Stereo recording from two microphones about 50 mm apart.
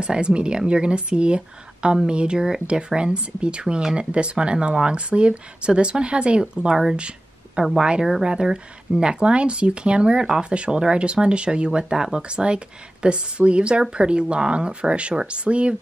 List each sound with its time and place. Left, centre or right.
0.0 s speech: centre